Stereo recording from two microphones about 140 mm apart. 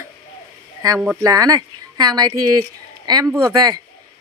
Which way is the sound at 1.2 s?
25° right (ahead or behind).